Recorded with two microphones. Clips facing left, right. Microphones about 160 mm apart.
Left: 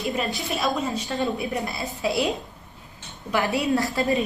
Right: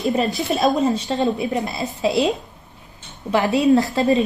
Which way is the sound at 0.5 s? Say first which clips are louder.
Right 8 dB; 35° right (ahead or behind).